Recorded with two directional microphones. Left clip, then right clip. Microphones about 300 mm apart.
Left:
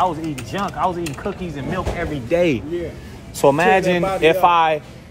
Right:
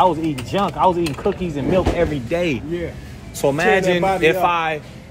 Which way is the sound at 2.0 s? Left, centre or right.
Centre.